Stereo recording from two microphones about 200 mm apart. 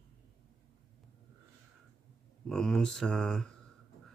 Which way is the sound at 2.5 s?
5° left (ahead or behind).